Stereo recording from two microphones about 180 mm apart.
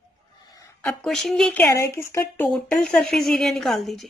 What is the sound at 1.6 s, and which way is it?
Speech, 15° left (ahead or behind).